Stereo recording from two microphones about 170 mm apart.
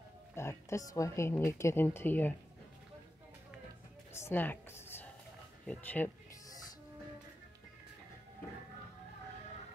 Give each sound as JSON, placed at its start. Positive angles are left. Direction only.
{"t": 0.3, "sound": "a woman's voice", "side_deg": 15}
{"t": 4.1, "sound": "music", "side_deg": 15}
{"t": 5.7, "sound": "a woman's voice", "side_deg": 10}